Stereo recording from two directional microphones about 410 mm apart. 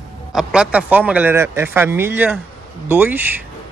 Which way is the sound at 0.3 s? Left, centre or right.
Centre.